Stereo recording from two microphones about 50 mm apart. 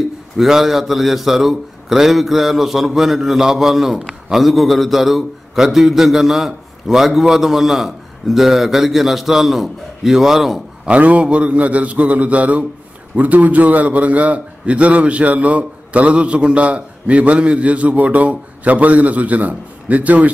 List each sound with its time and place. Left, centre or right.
0.4 s a man's voice: centre
10.9 s a man's voice: right